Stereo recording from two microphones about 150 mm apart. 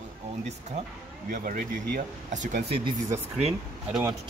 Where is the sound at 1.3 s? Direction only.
70° right (ahead or behind).